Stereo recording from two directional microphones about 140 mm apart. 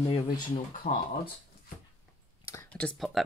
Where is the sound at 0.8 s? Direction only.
60° left (ahead or behind).